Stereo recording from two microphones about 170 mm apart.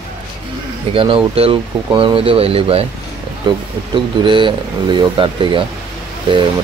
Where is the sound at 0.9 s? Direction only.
30° right (ahead or behind).